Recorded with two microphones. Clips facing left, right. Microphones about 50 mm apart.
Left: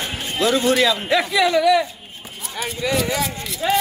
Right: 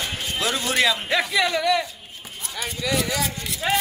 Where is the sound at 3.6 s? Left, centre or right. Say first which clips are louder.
Left 3 dB; centre.